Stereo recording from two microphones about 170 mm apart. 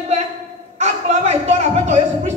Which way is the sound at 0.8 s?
40° right (ahead or behind).